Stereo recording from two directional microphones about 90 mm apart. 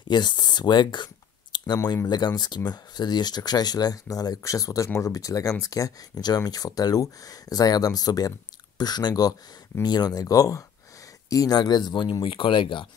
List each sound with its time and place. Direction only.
0.1 s speech: 55° left (ahead or behind)